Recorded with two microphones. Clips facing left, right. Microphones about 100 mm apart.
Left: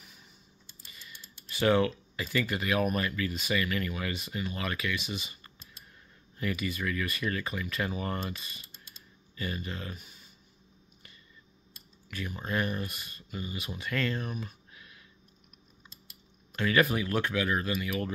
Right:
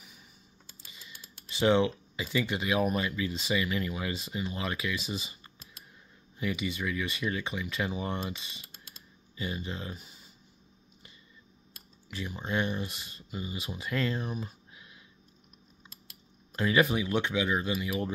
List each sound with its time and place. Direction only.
0.9 s speech: 20° right (ahead or behind)
6.3 s speech: 15° right (ahead or behind)
12.1 s speech: 25° right (ahead or behind)
16.7 s speech: 15° right (ahead or behind)